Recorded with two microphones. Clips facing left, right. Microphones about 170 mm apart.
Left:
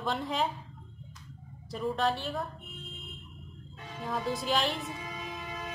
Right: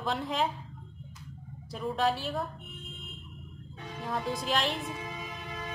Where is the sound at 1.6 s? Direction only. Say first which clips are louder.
Even; centre (ahead or behind).